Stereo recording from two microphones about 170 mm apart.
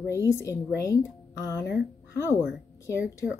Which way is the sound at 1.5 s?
80° left.